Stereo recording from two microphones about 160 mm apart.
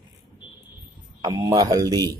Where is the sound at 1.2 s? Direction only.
25° right (ahead or behind).